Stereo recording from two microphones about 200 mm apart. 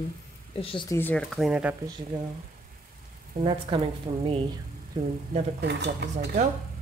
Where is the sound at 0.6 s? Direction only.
25° left (ahead or behind).